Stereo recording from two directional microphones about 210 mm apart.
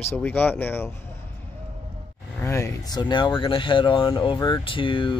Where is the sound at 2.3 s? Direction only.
10° left (ahead or behind).